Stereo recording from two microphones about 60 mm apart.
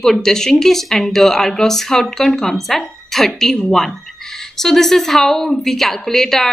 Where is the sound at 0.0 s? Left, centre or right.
Centre.